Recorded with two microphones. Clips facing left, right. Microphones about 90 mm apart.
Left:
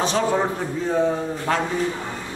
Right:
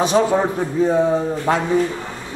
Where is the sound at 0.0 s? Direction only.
15° right (ahead or behind).